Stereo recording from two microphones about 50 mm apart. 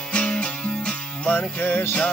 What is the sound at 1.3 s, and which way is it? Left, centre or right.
Music, left.